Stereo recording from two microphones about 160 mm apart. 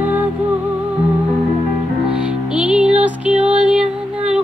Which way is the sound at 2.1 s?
5° right (ahead or behind).